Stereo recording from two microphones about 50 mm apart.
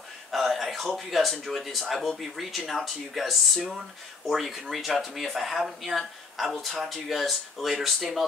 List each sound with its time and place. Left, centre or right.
0.3 s speech: centre